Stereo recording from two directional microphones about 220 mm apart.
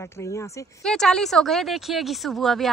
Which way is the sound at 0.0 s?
10° left (ahead or behind).